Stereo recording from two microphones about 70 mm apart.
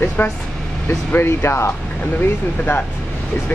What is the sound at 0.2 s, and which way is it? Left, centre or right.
Speech, left.